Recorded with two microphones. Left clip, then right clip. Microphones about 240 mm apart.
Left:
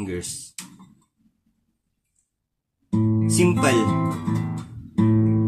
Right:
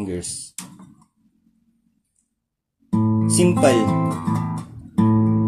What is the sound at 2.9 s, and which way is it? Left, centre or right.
Music, centre.